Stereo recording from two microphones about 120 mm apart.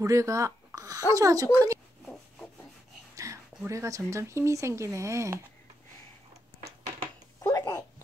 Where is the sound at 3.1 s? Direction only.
25° right (ahead or behind).